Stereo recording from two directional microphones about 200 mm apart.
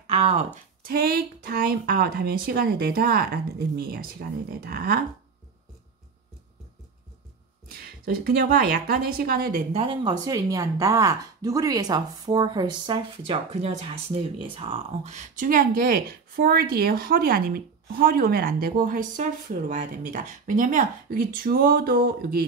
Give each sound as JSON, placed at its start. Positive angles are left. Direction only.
{"t": 0.0, "sound": "a sound", "side_deg": -30}
{"t": 0.8, "sound": "speech", "side_deg": -50}
{"t": 7.6, "sound": "speech", "side_deg": -50}
{"t": 9.7, "sound": "speech", "side_deg": -30}